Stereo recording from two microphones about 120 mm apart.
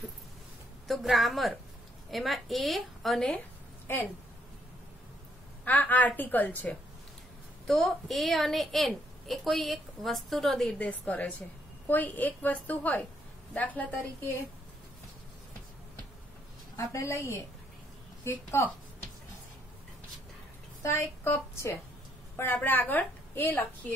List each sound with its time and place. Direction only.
0.8 s a woman's voice: centre (ahead or behind); by 4.1 s 15° left (ahead or behind)
5.7 s a woman's voice: 15° left (ahead or behind)
7.6 s a woman's voice: centre (ahead or behind)
10.8 s a woman's voice: 10° left (ahead or behind)
16.7 s a woman's voice: 25° left (ahead or behind)
20.8 s a woman's voice: 20° left (ahead or behind)